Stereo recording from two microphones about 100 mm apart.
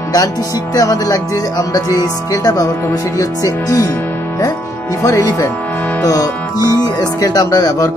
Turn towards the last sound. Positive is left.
turn(degrees=40)  # may be behind; listen again after turning